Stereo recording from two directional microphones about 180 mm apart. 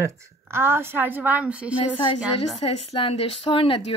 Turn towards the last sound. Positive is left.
turn(degrees=30)  # may be behind; listen again after turning